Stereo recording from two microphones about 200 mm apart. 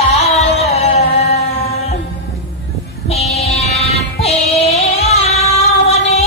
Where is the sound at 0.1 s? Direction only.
35° left (ahead or behind).